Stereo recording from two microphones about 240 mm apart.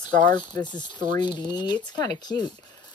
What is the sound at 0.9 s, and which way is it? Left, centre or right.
Speech, right.